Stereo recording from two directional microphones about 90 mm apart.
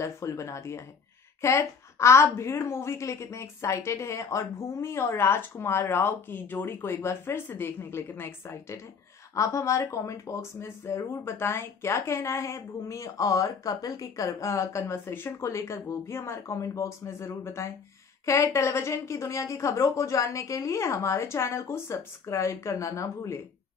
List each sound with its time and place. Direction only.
0.0 s a woman's voice: 35° left (ahead or behind)